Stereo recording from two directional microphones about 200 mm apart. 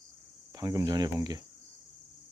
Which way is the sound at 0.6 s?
20° right (ahead or behind).